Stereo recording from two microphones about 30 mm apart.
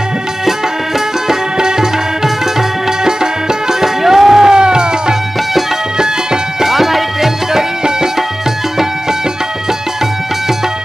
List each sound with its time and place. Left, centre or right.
0.5 s music: centre
3.0 s music: right
6.6 s music: centre